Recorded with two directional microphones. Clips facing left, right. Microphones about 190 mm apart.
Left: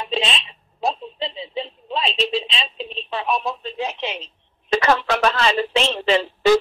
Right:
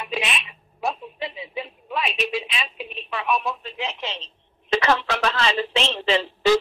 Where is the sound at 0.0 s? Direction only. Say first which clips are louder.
Left 3 dB; 30° left (ahead or behind).